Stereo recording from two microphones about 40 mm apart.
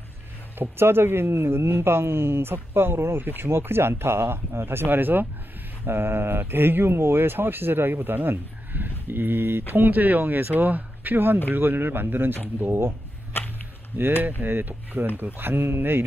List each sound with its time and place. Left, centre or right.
0.6 s speech: right
4.8 s speech: right
5.9 s speech: right
13.4 s whip: left
13.9 s speech: right